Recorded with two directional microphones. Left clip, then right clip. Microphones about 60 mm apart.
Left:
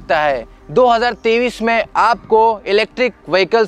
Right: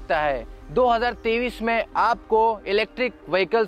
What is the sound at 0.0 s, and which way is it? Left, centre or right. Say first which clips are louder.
Speech: left 8 dB; left.